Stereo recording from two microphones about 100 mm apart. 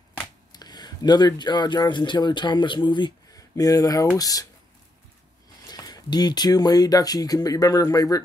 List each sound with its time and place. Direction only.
0.5 s speech: 45° left (ahead or behind)
3.3 s speech: 35° left (ahead or behind)
5.7 s speech: 40° left (ahead or behind)